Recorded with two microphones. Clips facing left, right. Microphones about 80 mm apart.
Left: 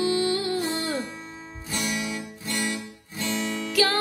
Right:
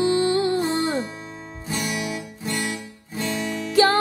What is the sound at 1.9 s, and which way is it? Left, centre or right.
Guitar, right.